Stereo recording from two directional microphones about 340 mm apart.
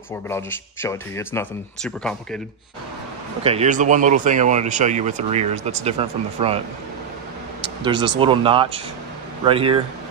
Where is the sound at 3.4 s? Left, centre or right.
Centre.